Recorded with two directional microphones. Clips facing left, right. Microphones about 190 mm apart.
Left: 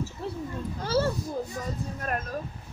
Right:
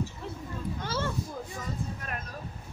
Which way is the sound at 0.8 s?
40° left (ahead or behind).